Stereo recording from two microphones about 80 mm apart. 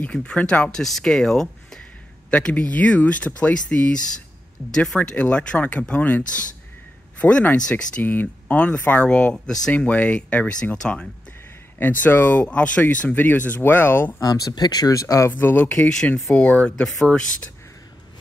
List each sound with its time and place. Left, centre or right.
0.0 s speech: centre
2.3 s speech: centre
7.7 s speech: left
11.8 s speech: left
14.2 s speech: left
15.2 s speech: left
15.7 s speech: centre